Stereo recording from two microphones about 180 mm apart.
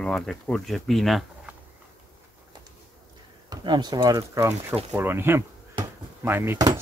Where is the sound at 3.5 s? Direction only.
25° right (ahead or behind).